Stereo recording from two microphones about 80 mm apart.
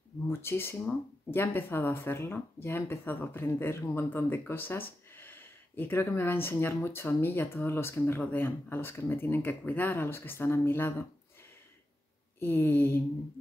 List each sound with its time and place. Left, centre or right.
0.3 s speech: left
12.4 s speech: left